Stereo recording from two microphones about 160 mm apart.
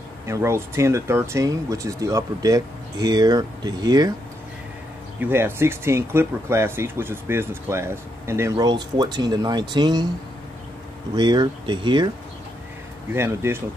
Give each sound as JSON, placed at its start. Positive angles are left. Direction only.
{"t": 0.3, "sound": "speech", "side_deg": -15}
{"t": 5.2, "sound": "speech", "side_deg": -15}
{"t": 11.1, "sound": "speech", "side_deg": -30}
{"t": 13.1, "sound": "speech", "side_deg": -15}